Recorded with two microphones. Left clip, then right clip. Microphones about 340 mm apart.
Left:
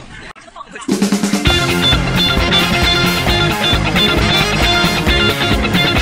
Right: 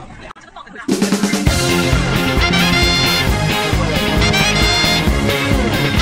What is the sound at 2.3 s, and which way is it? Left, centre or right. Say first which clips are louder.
Music: even; centre.